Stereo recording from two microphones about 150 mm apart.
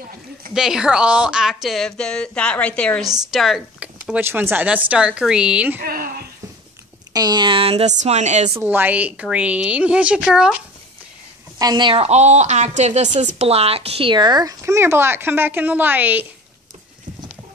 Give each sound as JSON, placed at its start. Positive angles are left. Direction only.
{"t": 0.6, "sound": "a woman's voice", "side_deg": -5}
{"t": 5.8, "sound": "speech", "side_deg": -80}
{"t": 7.2, "sound": "a woman's voice", "side_deg": -30}
{"t": 8.5, "sound": "speech", "side_deg": -10}
{"t": 11.5, "sound": "a woman's voice", "side_deg": -25}